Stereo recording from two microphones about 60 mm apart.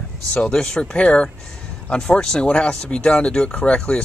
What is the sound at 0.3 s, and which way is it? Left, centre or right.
Speech, centre.